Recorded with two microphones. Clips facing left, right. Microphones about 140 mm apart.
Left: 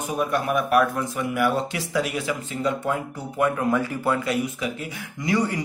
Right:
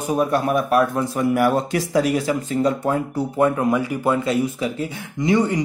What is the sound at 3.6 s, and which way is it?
Speech, 15° right (ahead or behind).